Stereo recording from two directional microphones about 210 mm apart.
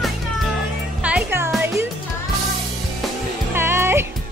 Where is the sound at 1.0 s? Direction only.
10° right (ahead or behind).